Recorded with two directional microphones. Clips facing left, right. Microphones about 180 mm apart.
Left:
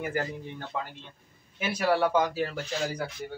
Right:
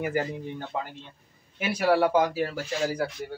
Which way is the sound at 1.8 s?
10° right (ahead or behind).